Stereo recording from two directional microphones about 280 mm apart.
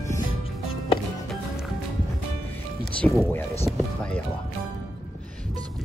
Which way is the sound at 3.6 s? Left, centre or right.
Centre.